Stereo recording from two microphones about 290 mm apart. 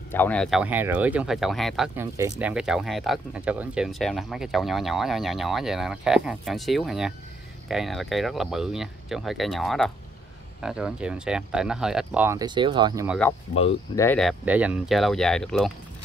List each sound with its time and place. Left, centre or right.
0.1 s speech: centre
13.6 s speech: centre
14.0 s speech: centre